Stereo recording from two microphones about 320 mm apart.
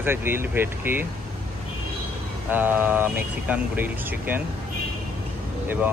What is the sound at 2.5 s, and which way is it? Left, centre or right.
Speech, centre.